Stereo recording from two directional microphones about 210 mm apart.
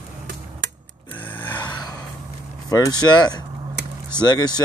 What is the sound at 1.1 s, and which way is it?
Gasp, 10° left (ahead or behind).